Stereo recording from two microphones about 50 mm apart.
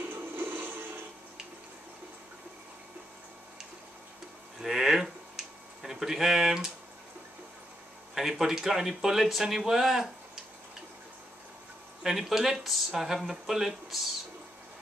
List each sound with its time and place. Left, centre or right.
0.1 s music: right
4.6 s tick-tock: centre
8.1 s speech: centre
12.0 s speech: centre